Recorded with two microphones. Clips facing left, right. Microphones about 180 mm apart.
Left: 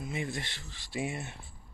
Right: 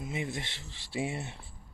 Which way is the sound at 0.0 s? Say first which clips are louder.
Even; 20° right (ahead or behind).